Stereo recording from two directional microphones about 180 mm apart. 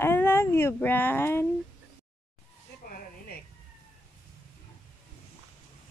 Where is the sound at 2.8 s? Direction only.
55° left (ahead or behind).